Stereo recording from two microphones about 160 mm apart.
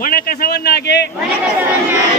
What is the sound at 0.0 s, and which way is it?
A man's voice, 65° left (ahead or behind).